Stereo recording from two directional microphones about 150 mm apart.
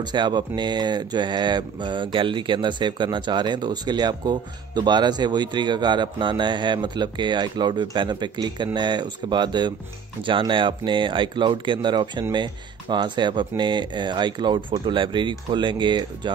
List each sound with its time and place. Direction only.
0.0 s speech: 30° right (ahead or behind)